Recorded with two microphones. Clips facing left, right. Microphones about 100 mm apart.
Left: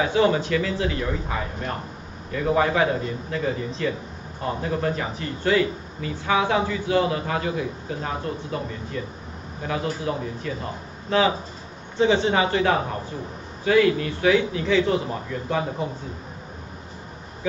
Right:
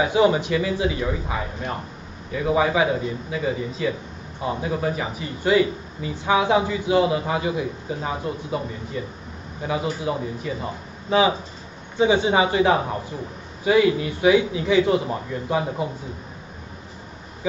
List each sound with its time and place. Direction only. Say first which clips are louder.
0.0 s a man's voice: right 2 dB; 15° right (ahead or behind)